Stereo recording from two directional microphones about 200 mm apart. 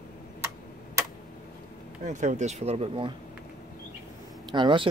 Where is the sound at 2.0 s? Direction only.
35° right (ahead or behind).